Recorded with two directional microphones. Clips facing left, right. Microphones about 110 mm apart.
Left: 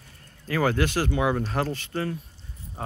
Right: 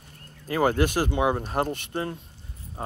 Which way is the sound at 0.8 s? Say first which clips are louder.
Right 1 dB; 15° right (ahead or behind).